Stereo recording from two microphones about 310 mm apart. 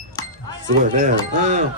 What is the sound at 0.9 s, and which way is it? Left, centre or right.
Speech, right.